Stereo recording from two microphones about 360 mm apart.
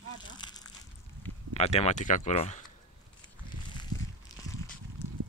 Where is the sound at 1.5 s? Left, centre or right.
Centre.